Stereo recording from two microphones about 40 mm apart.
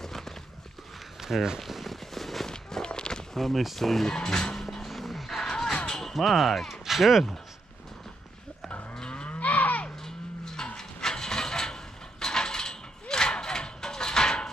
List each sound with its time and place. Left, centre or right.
0.0 s a sound: centre
1.2 s speech: centre
1.7 s a sound: centre
2.5 s walk: centre
3.3 s speech: centre
4.6 s music: centre
5.4 s a sound: centre
6.1 s speech: centre
8.9 s moo: left
9.3 s cattle: left
9.8 s cattle: centre
10.8 s mechanisms: centre
13.1 s a sound: centre